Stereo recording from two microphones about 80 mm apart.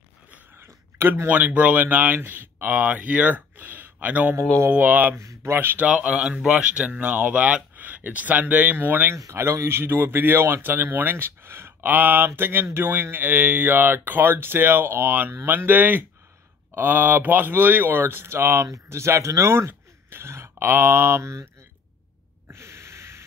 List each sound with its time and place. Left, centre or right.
0.3 s speech: right
5.1 s speech: right
5.9 s speech: centre
9.1 s speech: right
22.5 s a sound: right